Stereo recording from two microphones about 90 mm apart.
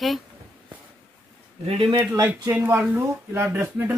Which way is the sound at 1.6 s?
75° right (ahead or behind).